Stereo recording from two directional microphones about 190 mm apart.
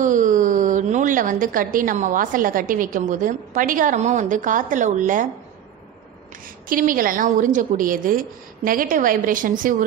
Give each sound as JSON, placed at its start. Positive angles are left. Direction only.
{"t": 0.0, "sound": "a woman's voice", "side_deg": -40}
{"t": 6.7, "sound": "a woman's voice", "side_deg": -45}